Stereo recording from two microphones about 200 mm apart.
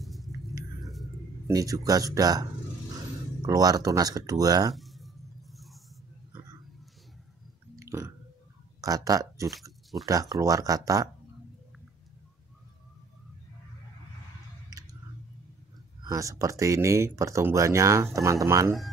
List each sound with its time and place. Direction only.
0.0 s a sound: centre (ahead or behind)
1.5 s speech: 15° right (ahead or behind)
3.4 s speech: 15° right (ahead or behind)
4.7 s a sound: centre (ahead or behind)
7.8 s chewing: 15° right (ahead or behind)
8.8 s speech: 15° right (ahead or behind)
9.5 s a sound: centre (ahead or behind)
10.3 s speech: 15° right (ahead or behind)
14.7 s chewing: 15° right (ahead or behind)
16.0 s speech: 15° right (ahead or behind)